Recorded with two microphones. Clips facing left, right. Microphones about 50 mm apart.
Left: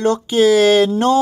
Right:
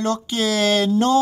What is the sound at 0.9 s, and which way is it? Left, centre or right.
Mantra, left.